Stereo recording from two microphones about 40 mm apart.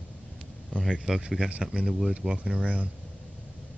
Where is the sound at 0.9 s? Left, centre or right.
Centre.